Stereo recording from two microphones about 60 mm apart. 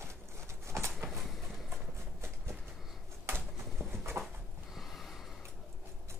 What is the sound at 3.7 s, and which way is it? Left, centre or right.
Pigeon, right.